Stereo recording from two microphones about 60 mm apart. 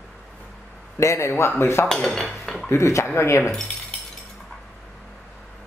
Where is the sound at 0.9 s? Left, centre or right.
Left.